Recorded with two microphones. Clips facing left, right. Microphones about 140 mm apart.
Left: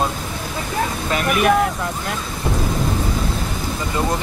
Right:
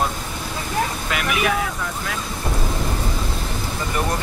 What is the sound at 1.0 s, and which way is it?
Speech, 40° left (ahead or behind).